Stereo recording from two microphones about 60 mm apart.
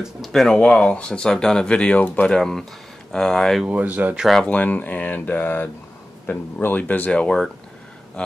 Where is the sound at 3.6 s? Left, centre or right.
Right.